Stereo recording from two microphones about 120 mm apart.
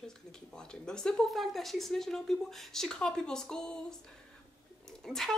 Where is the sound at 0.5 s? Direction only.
5° left (ahead or behind).